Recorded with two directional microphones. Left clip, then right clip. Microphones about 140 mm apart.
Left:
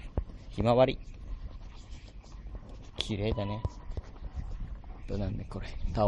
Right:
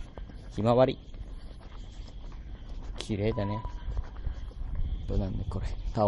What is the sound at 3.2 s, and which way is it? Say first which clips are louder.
Speech: right 6 dB; 20° right (ahead or behind).